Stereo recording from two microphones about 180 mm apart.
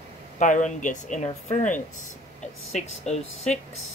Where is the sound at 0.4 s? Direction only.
45° left (ahead or behind).